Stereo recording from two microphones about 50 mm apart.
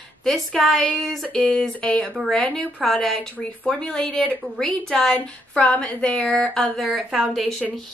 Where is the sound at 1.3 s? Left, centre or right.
Centre.